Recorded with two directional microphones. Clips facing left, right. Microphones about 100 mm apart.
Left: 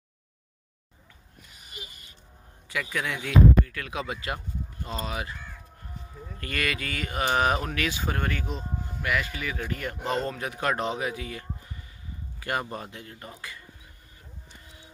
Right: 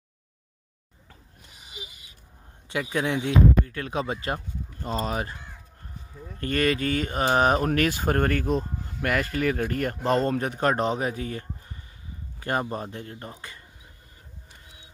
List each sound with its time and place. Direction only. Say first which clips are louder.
1.7 s owl: right 1 dB; 10° right (ahead or behind)
2.7 s speech: right 5 dB; 25° right (ahead or behind)
6.4 s speech: right 7 dB; 35° right (ahead or behind)